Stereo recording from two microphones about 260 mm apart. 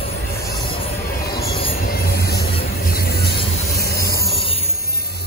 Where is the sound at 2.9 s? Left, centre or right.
Left.